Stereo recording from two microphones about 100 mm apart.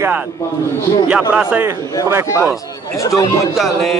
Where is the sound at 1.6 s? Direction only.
25° right (ahead or behind).